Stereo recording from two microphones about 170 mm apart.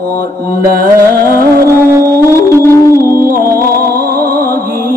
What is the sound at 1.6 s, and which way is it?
Music, 15° right (ahead or behind).